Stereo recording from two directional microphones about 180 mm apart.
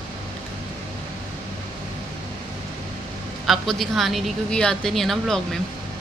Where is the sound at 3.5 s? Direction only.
Centre (ahead or behind).